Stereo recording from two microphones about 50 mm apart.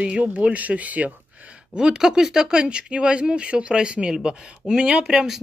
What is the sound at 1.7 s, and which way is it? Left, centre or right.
Speech, centre.